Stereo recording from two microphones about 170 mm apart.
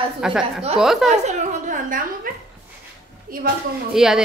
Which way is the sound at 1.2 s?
45° right (ahead or behind).